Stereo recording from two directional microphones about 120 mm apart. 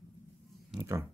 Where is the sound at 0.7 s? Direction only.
25° right (ahead or behind).